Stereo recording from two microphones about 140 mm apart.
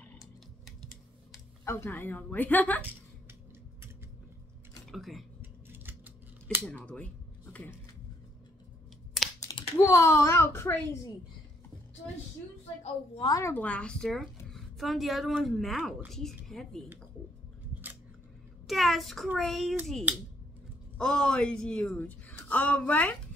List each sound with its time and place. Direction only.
1.6 s a woman's voice: 20° left (ahead or behind)
4.9 s speech: centre (ahead or behind)
5.4 s typing: 15° right (ahead or behind)
6.6 s a woman's voice: 10° left (ahead or behind)
9.4 s speech: 25° left (ahead or behind)
13.2 s speech: 25° left (ahead or behind)
13.5 s speech: 10° left (ahead or behind)
18.7 s speech: centre (ahead or behind)
20.1 s speech: 10° right (ahead or behind)
21.0 s a woman's voice: 5° left (ahead or behind)